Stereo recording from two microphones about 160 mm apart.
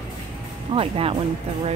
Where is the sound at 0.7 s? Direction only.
35° right (ahead or behind).